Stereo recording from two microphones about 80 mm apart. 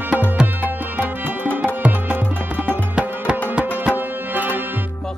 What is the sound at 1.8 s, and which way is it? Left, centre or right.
Music, centre.